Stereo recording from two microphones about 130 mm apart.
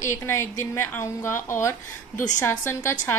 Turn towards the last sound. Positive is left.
turn(degrees=20)  # may be behind; listen again after turning